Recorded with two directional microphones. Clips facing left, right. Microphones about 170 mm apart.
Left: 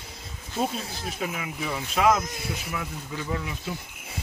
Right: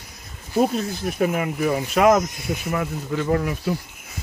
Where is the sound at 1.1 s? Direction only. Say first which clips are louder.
Right 10 dB; 55° right (ahead or behind).